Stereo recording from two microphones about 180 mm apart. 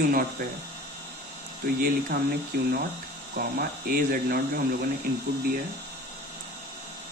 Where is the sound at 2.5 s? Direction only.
55° right (ahead or behind).